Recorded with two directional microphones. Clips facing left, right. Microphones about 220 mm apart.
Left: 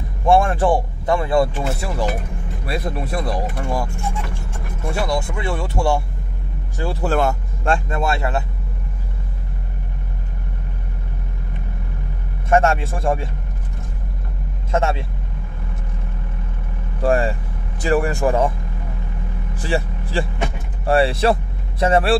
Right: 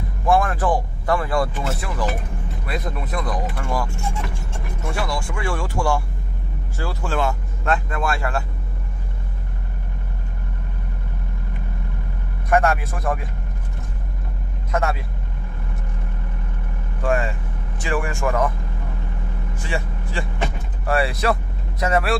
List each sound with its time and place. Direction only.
0.3 s speech: 25° left (ahead or behind)
4.9 s speech: 20° left (ahead or behind)
7.0 s speech: 40° left (ahead or behind)
7.6 s speech: 25° left (ahead or behind)
12.4 s speech: 25° left (ahead or behind)
14.7 s speech: 25° left (ahead or behind)
17.0 s speech: 35° left (ahead or behind)
19.5 s vehicle: 35° left (ahead or behind)
20.8 s speech: 30° left (ahead or behind)